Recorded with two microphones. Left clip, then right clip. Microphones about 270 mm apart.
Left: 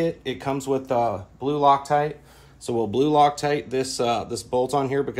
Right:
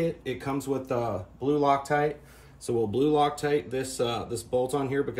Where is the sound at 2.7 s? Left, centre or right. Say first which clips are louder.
Left 3 dB; left.